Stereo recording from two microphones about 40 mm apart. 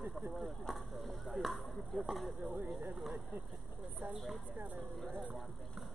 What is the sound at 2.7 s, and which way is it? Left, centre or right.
Speech, right.